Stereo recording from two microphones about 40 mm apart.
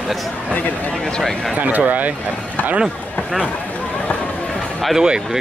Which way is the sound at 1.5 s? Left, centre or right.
Right.